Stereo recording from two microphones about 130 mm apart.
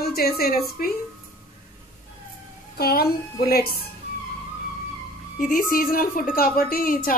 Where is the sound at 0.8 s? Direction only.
90° left.